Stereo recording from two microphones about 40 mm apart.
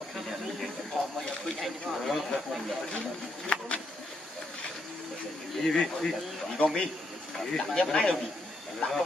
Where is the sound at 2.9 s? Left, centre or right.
Left.